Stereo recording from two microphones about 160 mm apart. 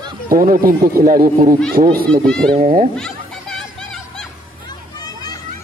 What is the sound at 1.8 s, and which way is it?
Speech, 35° right (ahead or behind).